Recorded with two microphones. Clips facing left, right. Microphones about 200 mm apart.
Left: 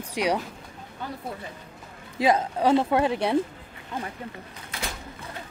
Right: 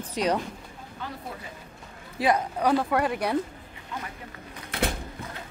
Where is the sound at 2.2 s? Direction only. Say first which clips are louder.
Left 2 dB; 25° left (ahead or behind).